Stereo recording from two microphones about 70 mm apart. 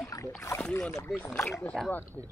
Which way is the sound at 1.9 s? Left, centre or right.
Left.